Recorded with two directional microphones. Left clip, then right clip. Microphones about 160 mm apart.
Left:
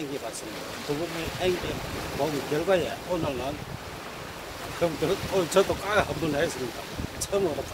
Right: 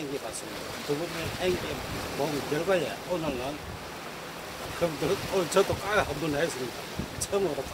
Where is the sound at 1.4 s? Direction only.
20° left (ahead or behind).